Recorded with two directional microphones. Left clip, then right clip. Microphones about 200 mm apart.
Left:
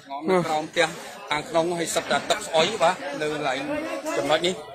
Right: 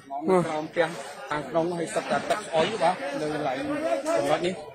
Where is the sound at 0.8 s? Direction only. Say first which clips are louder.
Left 2 dB; 30° left (ahead or behind).